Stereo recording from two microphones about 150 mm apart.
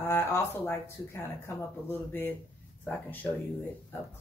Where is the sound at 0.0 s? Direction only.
15° left (ahead or behind).